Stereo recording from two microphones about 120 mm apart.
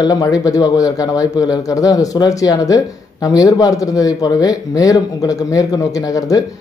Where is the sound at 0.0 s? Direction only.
30° left (ahead or behind).